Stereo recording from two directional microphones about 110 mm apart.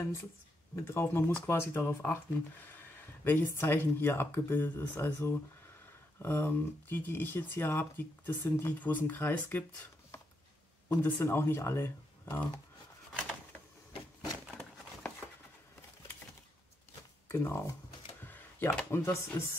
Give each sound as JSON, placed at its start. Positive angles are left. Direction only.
{"t": 0.7, "sound": "speech", "side_deg": 20}
{"t": 11.0, "sound": "speech", "side_deg": 20}
{"t": 17.3, "sound": "speech", "side_deg": 25}